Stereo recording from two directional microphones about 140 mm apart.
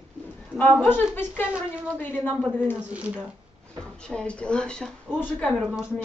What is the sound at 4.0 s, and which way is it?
A woman's voice, 5° left (ahead or behind).